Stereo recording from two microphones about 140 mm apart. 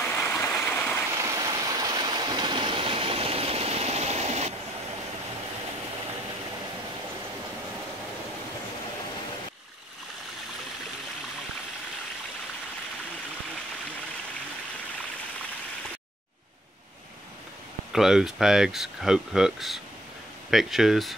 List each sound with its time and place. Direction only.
0.0 s vehicle: 15° left (ahead or behind)
1.1 s vehicle: 20° right (ahead or behind); by 4.6 s 55° right (ahead or behind)
17.9 s speech: 5° right (ahead or behind)